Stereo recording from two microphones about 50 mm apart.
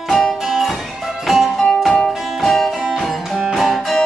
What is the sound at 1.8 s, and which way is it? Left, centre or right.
Music, centre.